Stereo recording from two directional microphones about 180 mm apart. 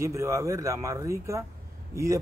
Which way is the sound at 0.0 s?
15° right (ahead or behind).